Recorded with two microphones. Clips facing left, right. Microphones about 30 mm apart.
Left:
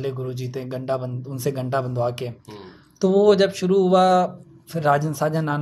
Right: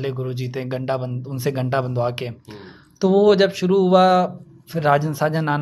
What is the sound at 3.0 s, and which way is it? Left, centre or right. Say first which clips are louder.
A man's voice: right 1 dB; centre.